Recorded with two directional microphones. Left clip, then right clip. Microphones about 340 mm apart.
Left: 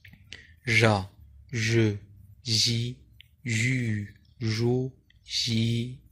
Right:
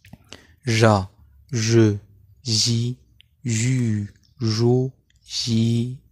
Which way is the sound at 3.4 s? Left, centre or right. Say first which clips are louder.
Right 2 dB; right.